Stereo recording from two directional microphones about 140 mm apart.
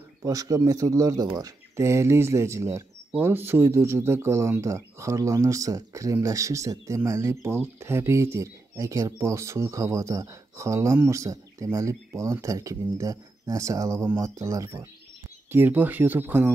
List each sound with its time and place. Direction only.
0.2 s speech: 25° right (ahead or behind)